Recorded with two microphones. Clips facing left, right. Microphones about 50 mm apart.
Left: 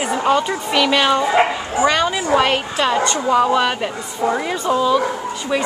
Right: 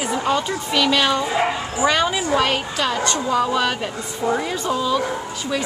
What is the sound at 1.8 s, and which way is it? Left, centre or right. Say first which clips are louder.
Speech: left 2 dB; centre.